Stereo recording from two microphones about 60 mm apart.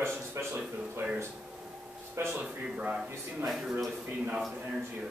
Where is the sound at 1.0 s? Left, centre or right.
Centre.